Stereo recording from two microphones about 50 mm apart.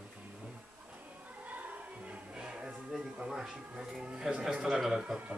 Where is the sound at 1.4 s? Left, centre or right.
Right.